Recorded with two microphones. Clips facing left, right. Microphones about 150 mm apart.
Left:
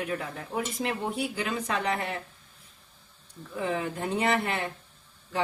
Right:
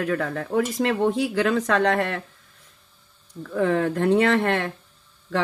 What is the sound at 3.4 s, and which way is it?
Speech, 85° right.